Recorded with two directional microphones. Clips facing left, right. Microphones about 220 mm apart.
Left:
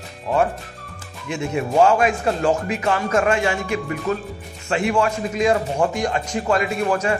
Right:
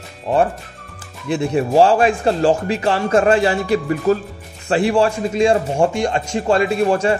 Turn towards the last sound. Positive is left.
turn(degrees=-30)  # may be behind; listen again after turning